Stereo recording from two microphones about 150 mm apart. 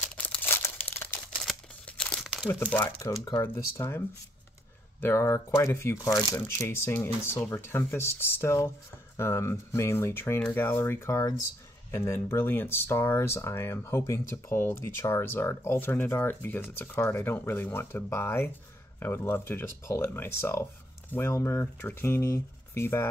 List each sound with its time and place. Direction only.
0.1 s crumpling: 10° left (ahead or behind)
1.4 s crumpling: 5° left (ahead or behind)
2.7 s speech: 20° left (ahead or behind)
5.0 s speech: 20° left (ahead or behind)